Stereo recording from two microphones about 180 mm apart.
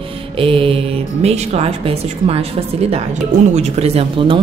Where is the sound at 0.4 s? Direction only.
30° right (ahead or behind).